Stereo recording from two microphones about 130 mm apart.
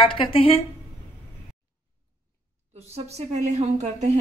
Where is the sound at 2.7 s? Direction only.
55° right (ahead or behind).